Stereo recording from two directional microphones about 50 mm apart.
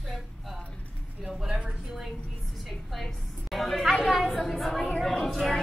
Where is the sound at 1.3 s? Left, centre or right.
Centre.